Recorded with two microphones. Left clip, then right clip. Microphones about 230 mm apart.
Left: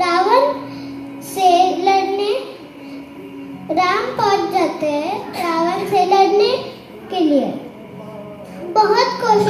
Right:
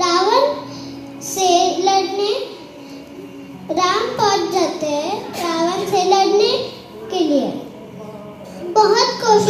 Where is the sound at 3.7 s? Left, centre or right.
Left.